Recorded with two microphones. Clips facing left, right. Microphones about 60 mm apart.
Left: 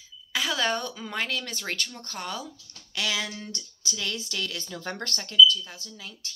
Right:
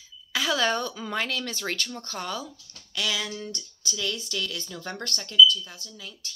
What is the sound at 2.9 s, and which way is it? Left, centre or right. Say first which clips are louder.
Speech: even; left.